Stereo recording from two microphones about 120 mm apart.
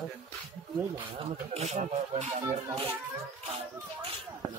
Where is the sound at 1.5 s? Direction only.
65° right (ahead or behind).